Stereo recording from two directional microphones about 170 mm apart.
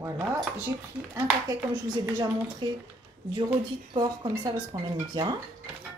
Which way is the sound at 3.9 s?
25° right (ahead or behind).